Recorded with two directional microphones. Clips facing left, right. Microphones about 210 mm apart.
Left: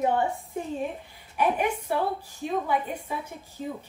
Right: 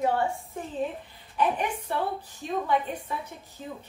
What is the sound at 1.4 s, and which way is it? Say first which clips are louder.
Speech: left 2 dB; 10° left (ahead or behind).